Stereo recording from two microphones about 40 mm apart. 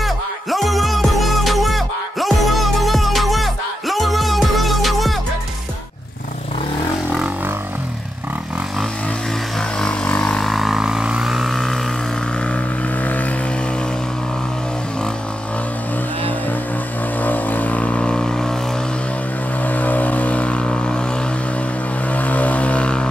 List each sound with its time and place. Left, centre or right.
0.0 s music: centre
9.6 s vehicle: left
10.4 s vehicle: centre
10.7 s vehicle: centre
11.2 s vehicle: centre
13.0 s vehicle: left
17.2 s vehicle: left; by 18.6 s centre
19.6 s vehicle: left
22.1 s vehicle: left